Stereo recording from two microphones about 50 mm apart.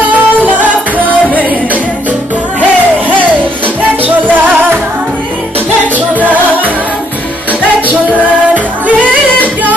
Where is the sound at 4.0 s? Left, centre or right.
Right.